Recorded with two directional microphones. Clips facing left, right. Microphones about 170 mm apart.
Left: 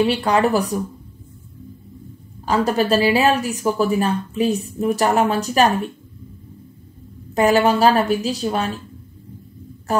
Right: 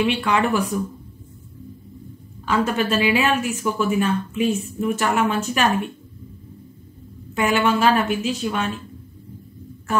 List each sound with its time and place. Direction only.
0.0 s a woman's voice: 35° left (ahead or behind)
2.4 s a woman's voice: 35° left (ahead or behind)
7.3 s a woman's voice: 40° left (ahead or behind)
9.9 s a woman's voice: 40° left (ahead or behind)